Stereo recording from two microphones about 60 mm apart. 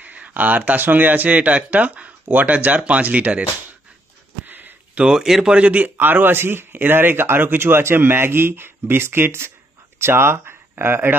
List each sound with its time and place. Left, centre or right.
0.0 s speech: right
4.5 s a sound: right
5.0 s speech: centre
5.9 s speech: right